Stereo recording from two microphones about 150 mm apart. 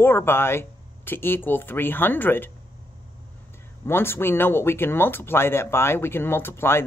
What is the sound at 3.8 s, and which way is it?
Speech, 15° left (ahead or behind).